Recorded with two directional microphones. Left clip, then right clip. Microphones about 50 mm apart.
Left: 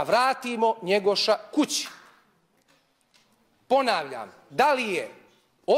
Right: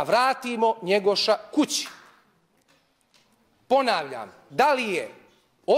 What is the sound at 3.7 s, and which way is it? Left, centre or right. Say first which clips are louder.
A man's voice: right 1 dB; left.